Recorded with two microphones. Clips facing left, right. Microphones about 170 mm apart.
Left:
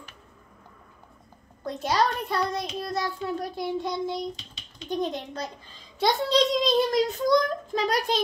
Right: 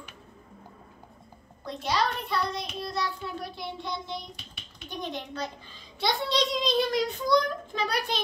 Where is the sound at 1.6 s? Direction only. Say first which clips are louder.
Left 3 dB; 45° left (ahead or behind).